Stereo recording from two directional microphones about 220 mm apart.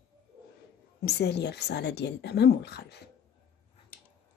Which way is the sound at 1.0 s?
50° left (ahead or behind).